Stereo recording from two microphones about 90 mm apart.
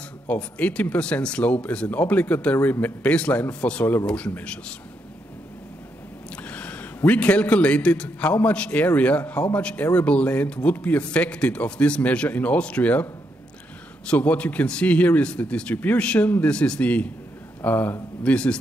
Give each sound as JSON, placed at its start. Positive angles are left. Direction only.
{"t": 0.3, "sound": "speech", "side_deg": 15}
{"t": 6.3, "sound": "a man's voice", "side_deg": 15}
{"t": 14.0, "sound": "speech", "side_deg": 15}